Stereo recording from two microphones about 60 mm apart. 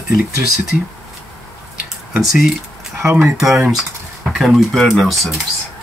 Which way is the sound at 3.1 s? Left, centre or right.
Right.